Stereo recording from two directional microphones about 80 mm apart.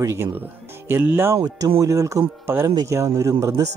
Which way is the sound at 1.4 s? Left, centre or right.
Right.